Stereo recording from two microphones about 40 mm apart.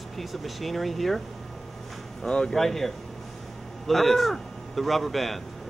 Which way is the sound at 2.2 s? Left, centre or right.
Left.